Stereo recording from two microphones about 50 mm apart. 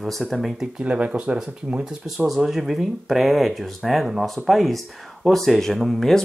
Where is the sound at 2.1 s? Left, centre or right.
Centre.